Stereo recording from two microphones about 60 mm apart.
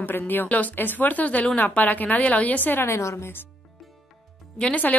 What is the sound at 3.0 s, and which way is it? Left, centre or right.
Speech, left.